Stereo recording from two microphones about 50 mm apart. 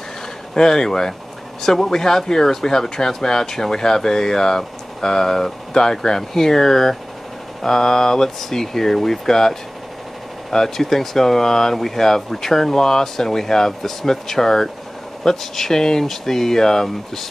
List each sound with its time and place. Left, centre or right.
0.6 s speech: centre